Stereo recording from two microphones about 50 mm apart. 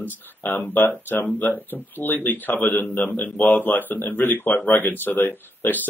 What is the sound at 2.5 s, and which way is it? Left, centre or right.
Speech, left.